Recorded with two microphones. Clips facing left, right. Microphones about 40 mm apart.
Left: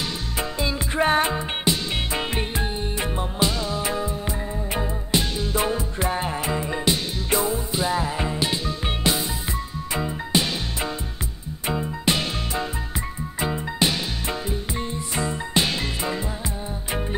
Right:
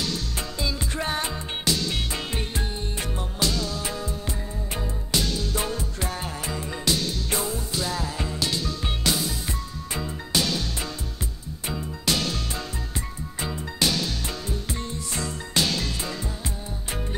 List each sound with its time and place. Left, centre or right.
0.4 s music: left